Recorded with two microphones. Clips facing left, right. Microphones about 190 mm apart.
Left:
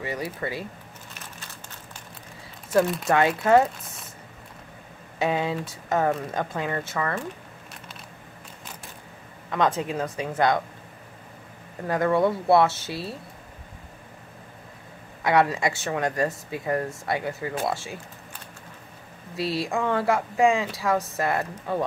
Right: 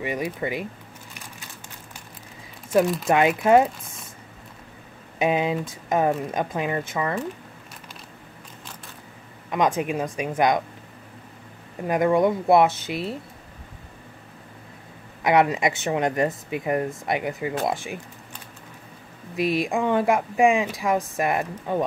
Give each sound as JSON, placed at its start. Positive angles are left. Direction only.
{"t": 0.0, "sound": "speech", "side_deg": -20}
{"t": 3.1, "sound": "speech", "side_deg": -15}
{"t": 5.2, "sound": "speech", "side_deg": -15}
{"t": 9.5, "sound": "speech", "side_deg": -15}
{"t": 11.8, "sound": "speech", "side_deg": -15}
{"t": 15.2, "sound": "speech", "side_deg": -20}
{"t": 19.3, "sound": "speech", "side_deg": -20}